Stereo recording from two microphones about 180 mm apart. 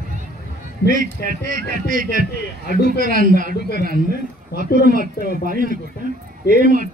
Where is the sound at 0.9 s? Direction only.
50° right (ahead or behind).